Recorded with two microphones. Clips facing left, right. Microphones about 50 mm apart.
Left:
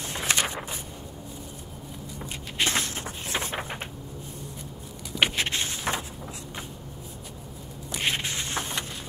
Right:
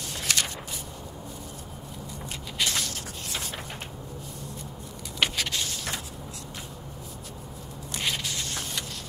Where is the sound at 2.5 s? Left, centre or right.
Left.